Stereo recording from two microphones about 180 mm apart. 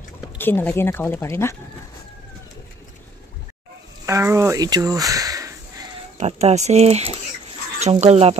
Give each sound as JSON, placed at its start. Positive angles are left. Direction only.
{"t": 0.4, "sound": "speech", "side_deg": 10}
{"t": 4.0, "sound": "a sound", "side_deg": -15}
{"t": 6.1, "sound": "speech", "side_deg": -35}